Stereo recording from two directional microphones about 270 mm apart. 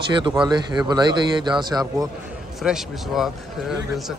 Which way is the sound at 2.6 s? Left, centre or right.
Centre.